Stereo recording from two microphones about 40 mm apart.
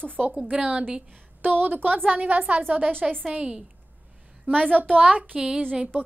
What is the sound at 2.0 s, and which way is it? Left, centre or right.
Speech, right.